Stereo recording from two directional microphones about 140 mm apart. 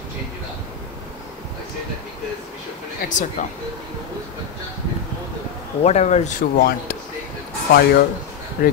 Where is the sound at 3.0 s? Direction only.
65° left (ahead or behind).